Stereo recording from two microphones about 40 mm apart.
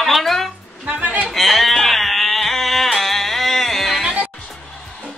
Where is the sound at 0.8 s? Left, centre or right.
Right.